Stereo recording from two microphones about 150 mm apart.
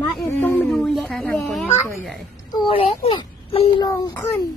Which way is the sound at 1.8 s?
20° left (ahead or behind).